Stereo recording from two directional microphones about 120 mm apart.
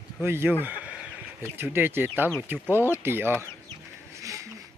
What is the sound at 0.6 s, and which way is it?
Chicken, 15° right (ahead or behind).